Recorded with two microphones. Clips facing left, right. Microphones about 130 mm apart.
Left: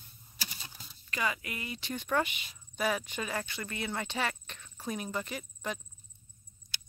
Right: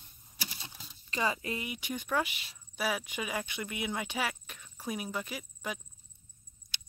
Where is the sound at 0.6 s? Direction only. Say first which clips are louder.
Even; 25° right (ahead or behind).